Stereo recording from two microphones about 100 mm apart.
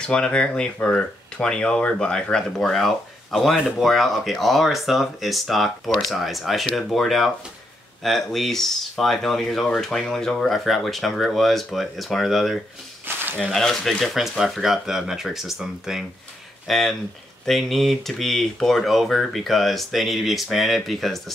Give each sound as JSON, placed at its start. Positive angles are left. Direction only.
{"t": 0.0, "sound": "speech", "side_deg": 10}
{"t": 13.1, "sound": "a sound", "side_deg": -20}
{"t": 13.5, "sound": "speech", "side_deg": 0}